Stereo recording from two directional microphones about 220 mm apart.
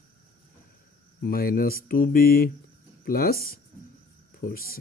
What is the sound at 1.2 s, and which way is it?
Speech, 40° left (ahead or behind).